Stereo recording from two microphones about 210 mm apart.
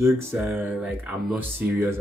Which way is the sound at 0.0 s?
10° right (ahead or behind).